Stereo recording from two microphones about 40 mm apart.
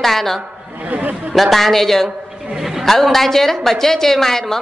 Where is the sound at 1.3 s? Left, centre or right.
Centre.